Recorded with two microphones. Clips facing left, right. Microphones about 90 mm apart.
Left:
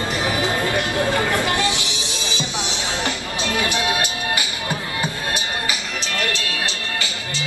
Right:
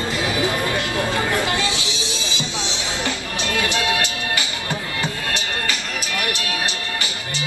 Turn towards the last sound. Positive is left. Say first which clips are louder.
# left 1 dB
turn(degrees=15)  # may be behind; listen again after turning